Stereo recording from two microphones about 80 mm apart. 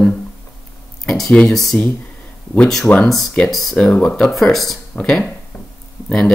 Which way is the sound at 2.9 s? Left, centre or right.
Centre.